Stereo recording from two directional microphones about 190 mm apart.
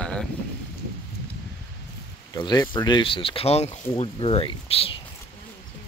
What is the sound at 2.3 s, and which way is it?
Speech, 20° left (ahead or behind).